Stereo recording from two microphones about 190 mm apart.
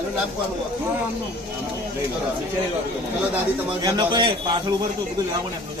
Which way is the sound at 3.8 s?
25° right (ahead or behind).